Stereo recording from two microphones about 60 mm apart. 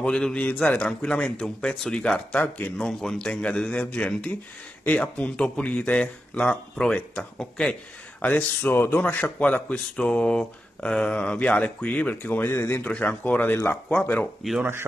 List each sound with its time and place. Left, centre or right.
0.0 s a man's voice: centre
2.8 s a man's voice: centre
8.2 s speech: left
9.1 s speech: left
12.8 s speech: left